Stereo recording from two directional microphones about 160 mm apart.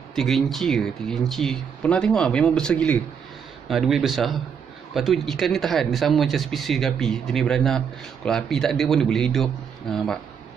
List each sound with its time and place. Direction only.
0.1 s speech: centre (ahead or behind)